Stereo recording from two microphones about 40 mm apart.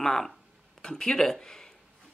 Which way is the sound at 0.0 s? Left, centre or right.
Centre.